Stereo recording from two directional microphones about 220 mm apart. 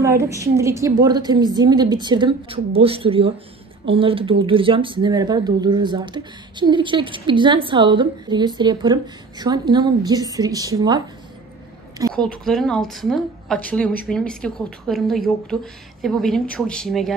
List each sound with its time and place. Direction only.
0.0 s a woman's voice: 15° right (ahead or behind)
12.1 s a woman's voice: centre (ahead or behind)